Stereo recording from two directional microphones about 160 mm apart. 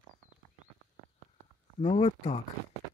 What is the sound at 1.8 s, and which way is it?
Speech, 35° left (ahead or behind).